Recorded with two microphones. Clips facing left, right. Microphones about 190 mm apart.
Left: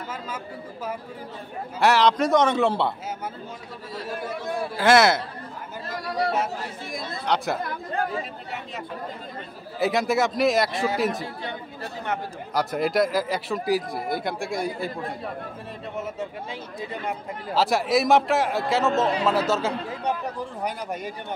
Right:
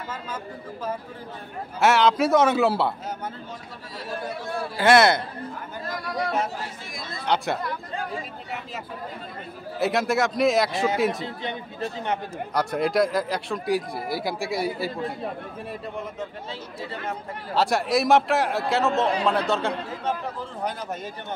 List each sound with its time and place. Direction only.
1.8 s speech: centre (ahead or behind)
4.7 s speech: centre (ahead or behind)
5.9 s speech: 35° left (ahead or behind)
7.2 s speech: centre (ahead or behind)
9.8 s speech: centre (ahead or behind)
11.2 s speech: 20° right (ahead or behind)
12.5 s speech: centre (ahead or behind)
16.8 s a man's voice: 15° left (ahead or behind)
17.6 s speech: centre (ahead or behind)
20.1 s a man's voice: 15° left (ahead or behind)